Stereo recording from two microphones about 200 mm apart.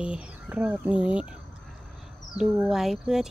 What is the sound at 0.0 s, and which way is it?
Speech, 5° right (ahead or behind).